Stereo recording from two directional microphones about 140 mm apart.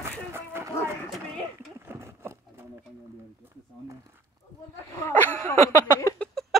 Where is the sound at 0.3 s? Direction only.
15° right (ahead or behind).